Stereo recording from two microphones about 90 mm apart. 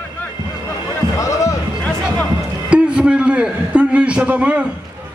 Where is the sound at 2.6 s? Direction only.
10° right (ahead or behind).